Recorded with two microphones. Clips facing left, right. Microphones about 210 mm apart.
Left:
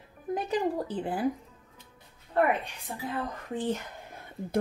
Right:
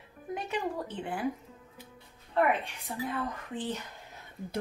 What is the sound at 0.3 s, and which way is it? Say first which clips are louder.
Speech: left 5 dB; 35° left (ahead or behind).